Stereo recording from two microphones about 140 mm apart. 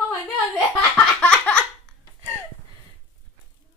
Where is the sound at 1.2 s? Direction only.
10° left (ahead or behind).